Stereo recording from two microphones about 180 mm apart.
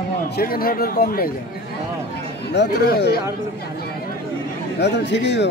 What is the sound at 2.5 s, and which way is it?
Speech, 65° left (ahead or behind).